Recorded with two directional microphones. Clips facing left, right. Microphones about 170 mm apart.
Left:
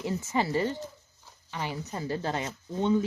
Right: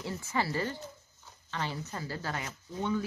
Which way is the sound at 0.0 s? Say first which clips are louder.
Left 4 dB; 20° left (ahead or behind).